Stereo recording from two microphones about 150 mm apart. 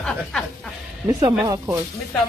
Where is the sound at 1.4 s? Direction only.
25° right (ahead or behind).